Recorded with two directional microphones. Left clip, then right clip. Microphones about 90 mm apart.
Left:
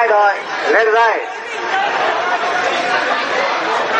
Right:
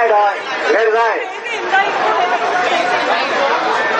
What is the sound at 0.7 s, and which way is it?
Speech, 25° left (ahead or behind).